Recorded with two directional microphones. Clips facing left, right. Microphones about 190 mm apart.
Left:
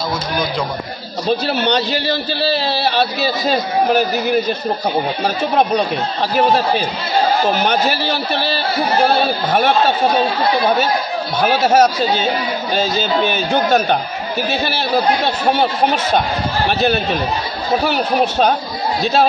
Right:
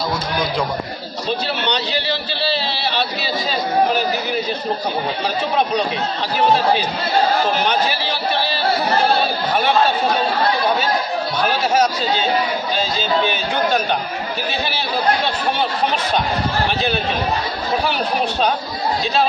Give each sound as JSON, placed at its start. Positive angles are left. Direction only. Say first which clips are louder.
{"t": 1.5, "sound": "a man's voice", "louder": "left 5 dB", "side_deg": 40}
{"t": 7.6, "sound": "a man's voice", "louder": "left 3 dB", "side_deg": 45}
{"t": 11.6, "sound": "a man's voice", "louder": "left 5 dB", "side_deg": 50}
{"t": 13.3, "sound": "a man's voice", "louder": "left 4 dB", "side_deg": 45}
{"t": 17.8, "sound": "a man's voice", "louder": "left 4 dB", "side_deg": 45}